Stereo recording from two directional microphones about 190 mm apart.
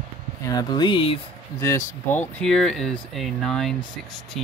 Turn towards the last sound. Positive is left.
turn(degrees=0)  # may be behind; listen again after turning